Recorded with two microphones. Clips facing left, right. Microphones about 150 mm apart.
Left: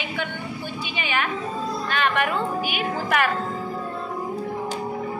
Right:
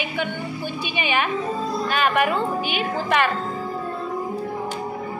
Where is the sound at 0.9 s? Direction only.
15° right (ahead or behind).